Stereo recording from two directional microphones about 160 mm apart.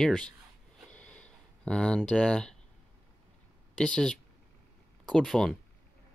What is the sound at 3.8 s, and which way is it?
Speech, 5° left (ahead or behind).